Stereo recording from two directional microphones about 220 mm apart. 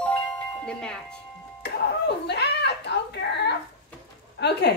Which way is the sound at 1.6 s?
50° left (ahead or behind).